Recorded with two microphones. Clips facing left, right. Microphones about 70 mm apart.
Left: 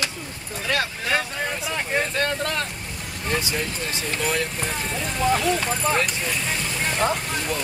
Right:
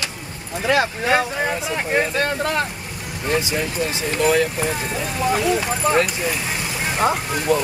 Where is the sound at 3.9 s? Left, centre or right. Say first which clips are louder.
Right 8 dB; centre.